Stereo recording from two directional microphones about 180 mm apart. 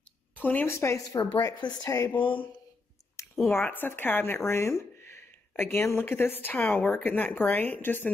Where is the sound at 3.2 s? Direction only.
15° left (ahead or behind).